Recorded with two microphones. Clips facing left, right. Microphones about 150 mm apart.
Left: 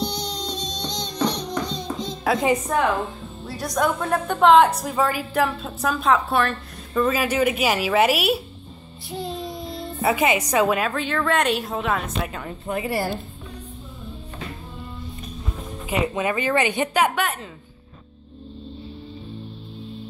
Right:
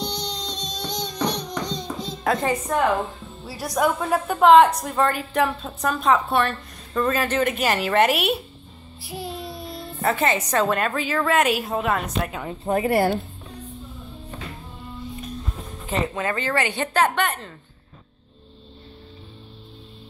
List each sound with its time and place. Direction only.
0.0 s music: 10° left (ahead or behind)
0.8 s music: 10° right (ahead or behind)
2.2 s speech: 10° left (ahead or behind)
3.4 s a woman's voice: 5° right (ahead or behind)
9.1 s child singing: 5° right (ahead or behind)
10.0 s a woman's voice: 10° left (ahead or behind)
12.6 s a woman's voice: 40° right (ahead or behind)
12.9 s speech: 60° right (ahead or behind)
15.9 s speech: 15° left (ahead or behind)